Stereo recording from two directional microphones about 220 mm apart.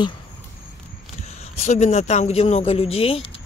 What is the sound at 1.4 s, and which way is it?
A man's voice, 30° left (ahead or behind).